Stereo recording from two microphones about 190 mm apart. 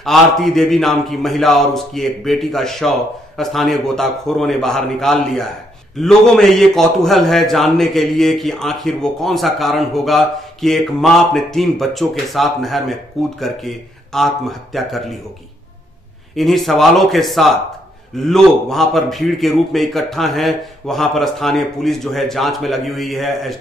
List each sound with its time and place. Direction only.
0.0 s a man's voice: centre (ahead or behind)
16.3 s a man's voice: centre (ahead or behind)